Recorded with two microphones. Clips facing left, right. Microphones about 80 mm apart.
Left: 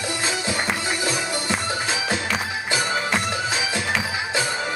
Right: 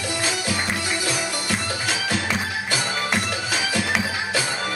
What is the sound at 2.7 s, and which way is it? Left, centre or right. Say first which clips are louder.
Music: left 2 dB; left.